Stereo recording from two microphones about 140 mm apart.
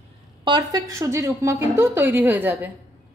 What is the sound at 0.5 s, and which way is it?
A woman's voice, 30° right (ahead or behind).